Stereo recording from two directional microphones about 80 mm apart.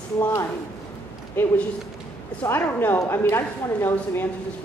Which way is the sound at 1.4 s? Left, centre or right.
Left.